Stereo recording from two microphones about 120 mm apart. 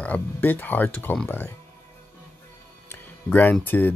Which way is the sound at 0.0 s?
15° left (ahead or behind).